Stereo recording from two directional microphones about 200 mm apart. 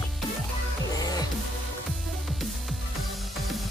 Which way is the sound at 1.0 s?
20° left (ahead or behind).